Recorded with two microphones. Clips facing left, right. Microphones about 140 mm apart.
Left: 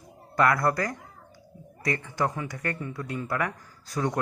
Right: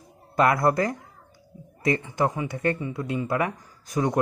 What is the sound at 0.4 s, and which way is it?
Speech, 20° right (ahead or behind).